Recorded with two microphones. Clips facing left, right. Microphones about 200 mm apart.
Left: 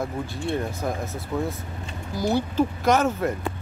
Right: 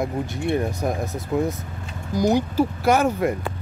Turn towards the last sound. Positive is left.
turn(degrees=-10)  # may be behind; listen again after turning